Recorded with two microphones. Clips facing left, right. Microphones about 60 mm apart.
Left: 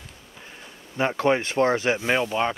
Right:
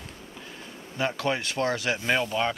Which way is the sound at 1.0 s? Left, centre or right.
Left.